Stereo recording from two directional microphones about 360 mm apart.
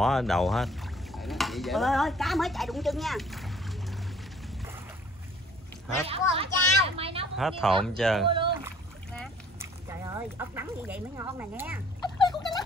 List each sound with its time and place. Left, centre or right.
0.0 s speech: centre
6.0 s a child's voice: centre
7.3 s speech: centre
8.3 s rowboat: centre
9.1 s a sound: centre
12.0 s a sound: centre